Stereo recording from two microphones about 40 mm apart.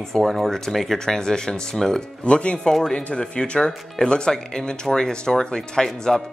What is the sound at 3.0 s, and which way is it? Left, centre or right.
Speech, left.